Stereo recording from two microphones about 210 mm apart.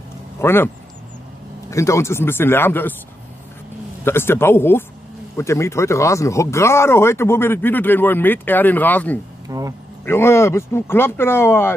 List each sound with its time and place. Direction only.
0.4 s speech: 10° left (ahead or behind)
1.7 s speech: 15° left (ahead or behind)
4.0 s speech: 10° left (ahead or behind)
9.5 s speech: 15° right (ahead or behind)
10.0 s speech: 10° left (ahead or behind)